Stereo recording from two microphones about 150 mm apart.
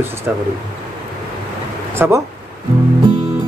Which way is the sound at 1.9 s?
15° right (ahead or behind).